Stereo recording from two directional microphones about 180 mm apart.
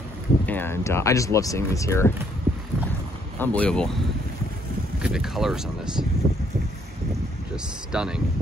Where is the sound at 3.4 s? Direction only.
5° left (ahead or behind).